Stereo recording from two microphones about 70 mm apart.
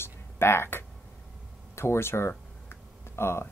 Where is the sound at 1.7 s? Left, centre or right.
Left.